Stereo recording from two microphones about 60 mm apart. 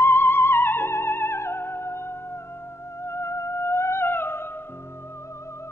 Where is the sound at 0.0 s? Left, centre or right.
Left.